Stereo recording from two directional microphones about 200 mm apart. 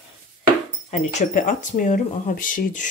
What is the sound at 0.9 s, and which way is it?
Speech, 35° left (ahead or behind).